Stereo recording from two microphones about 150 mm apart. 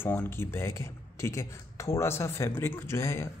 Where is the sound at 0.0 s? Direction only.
15° left (ahead or behind).